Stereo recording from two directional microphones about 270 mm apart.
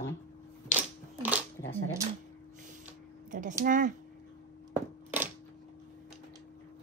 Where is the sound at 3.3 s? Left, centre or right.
Right.